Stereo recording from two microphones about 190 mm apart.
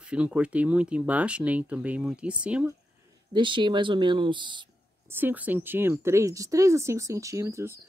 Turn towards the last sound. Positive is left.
turn(degrees=-15)  # may be behind; listen again after turning